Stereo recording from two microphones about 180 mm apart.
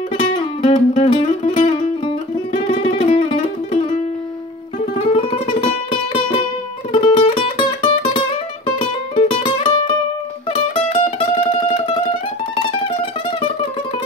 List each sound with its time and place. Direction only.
0.3 s music: 35° left (ahead or behind)
2.5 s music: 30° left (ahead or behind)
4.9 s music: 30° left (ahead or behind)